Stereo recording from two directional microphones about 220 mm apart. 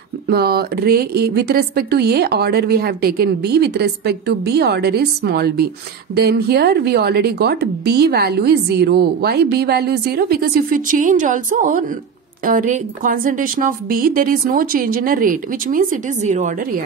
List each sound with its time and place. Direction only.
0.3 s a woman's voice: 45° right (ahead or behind)